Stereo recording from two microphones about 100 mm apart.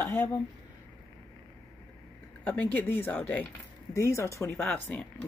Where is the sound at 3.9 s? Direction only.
30° left (ahead or behind).